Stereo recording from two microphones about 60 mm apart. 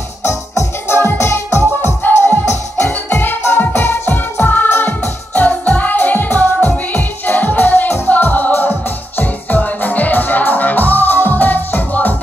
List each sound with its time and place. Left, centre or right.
0.2 s music: left
2.0 s music: left
2.4 s music: left
2.9 s music: left